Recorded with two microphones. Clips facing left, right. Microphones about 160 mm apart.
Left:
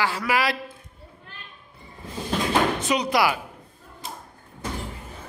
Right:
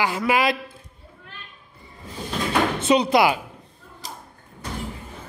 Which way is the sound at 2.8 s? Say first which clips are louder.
Right 5 dB; 25° right (ahead or behind).